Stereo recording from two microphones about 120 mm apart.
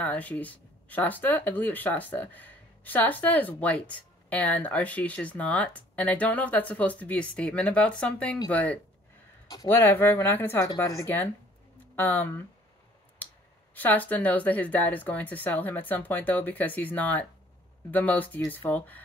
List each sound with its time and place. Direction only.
0.0 s speech: 10° left (ahead or behind)
11.9 s speech: 15° left (ahead or behind)
13.7 s speech: 15° left (ahead or behind)